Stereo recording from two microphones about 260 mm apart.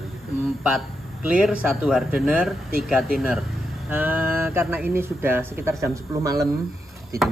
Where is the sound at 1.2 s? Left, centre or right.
Centre.